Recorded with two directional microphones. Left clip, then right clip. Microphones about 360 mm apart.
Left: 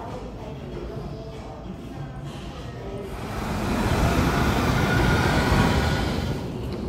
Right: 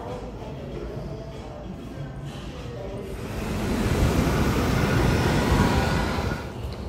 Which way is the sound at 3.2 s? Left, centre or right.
Centre.